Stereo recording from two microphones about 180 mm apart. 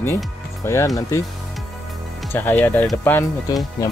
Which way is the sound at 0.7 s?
15° left (ahead or behind).